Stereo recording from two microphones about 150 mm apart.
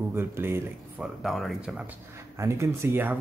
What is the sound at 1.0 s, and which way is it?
Speech, centre (ahead or behind).